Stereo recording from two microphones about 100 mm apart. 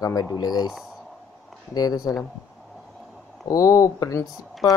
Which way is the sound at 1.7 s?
40° left (ahead or behind).